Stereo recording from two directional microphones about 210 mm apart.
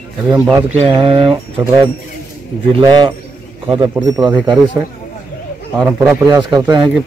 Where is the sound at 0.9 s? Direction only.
25° right (ahead or behind).